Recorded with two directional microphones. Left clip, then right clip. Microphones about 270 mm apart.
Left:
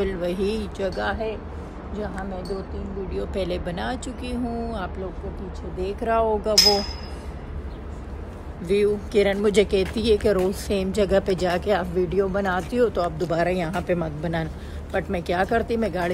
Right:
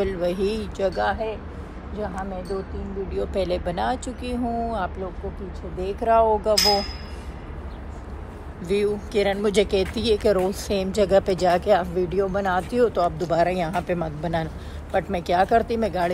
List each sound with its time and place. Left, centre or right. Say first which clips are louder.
0.0 s speech: right 1 dB; centre
2.5 s speech: right 3 dB; centre
3.1 s speech: right 3 dB; centre
8.6 s speech: left 2 dB; centre